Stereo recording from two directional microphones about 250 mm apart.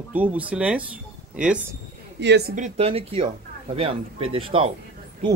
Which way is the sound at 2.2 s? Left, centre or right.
Right.